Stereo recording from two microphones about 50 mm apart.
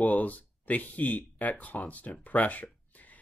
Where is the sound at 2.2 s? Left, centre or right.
Left.